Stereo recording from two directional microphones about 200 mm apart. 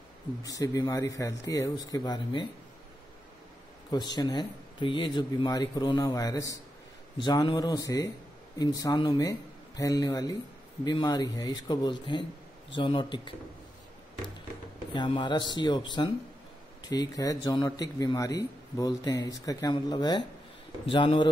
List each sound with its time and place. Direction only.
0.4 s a man's voice: 15° left (ahead or behind)
3.9 s a man's voice: 20° left (ahead or behind)
15.0 s a man's voice: 20° left (ahead or behind)